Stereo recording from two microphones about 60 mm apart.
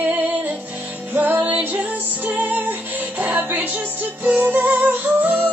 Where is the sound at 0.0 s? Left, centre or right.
Right.